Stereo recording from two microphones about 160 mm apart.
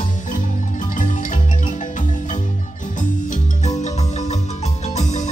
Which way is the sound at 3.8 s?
45° left (ahead or behind).